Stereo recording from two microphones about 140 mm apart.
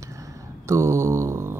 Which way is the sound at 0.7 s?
20° right (ahead or behind).